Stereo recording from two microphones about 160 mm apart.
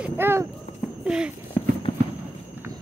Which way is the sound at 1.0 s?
5° right (ahead or behind).